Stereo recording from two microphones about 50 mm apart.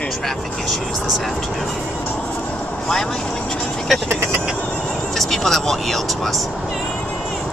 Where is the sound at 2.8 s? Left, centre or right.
Centre.